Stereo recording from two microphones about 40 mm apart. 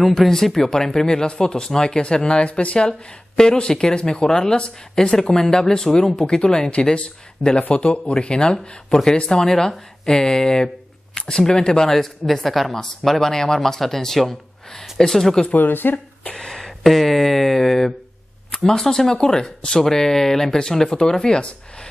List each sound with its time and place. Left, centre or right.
0.0 s speech: centre; by 2.9 s left
2.9 s speech: centre
11.9 s speech: centre
15.6 s speech: left
16.3 s speech: centre